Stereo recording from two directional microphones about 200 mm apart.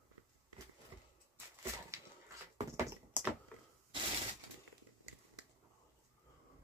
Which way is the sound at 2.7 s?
15° right (ahead or behind).